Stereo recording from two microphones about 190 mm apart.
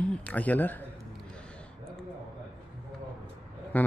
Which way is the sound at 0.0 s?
5° left (ahead or behind).